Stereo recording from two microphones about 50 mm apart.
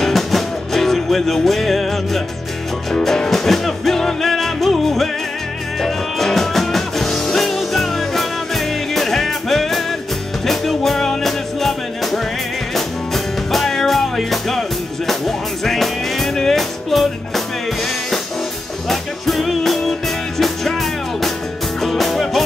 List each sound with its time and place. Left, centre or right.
0.0 s music: centre
18.9 s music: centre
21.8 s music: centre